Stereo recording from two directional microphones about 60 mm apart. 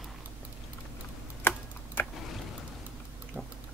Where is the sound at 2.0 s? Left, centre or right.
Left.